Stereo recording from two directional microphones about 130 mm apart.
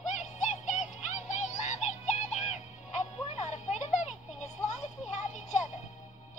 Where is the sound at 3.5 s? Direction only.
60° left (ahead or behind).